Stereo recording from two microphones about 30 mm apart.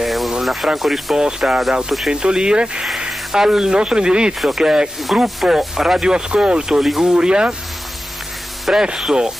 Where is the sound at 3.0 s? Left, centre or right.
Centre.